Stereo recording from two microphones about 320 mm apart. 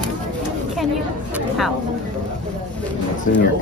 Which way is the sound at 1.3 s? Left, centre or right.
Centre.